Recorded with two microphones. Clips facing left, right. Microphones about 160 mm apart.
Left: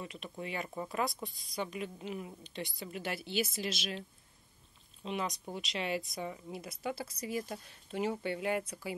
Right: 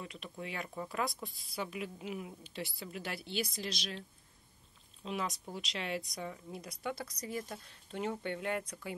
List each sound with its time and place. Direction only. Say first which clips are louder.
0.0 s a woman's voice: left 2 dB; centre (ahead or behind)
5.0 s a woman's voice: left 1 dB; centre (ahead or behind)